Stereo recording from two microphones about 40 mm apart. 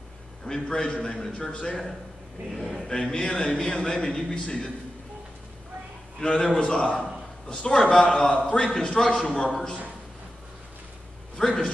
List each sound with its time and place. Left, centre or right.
0.5 s a man's voice: centre
2.5 s speech: centre
2.9 s a man's voice: centre
6.2 s a man's voice: left
11.3 s a man's voice: centre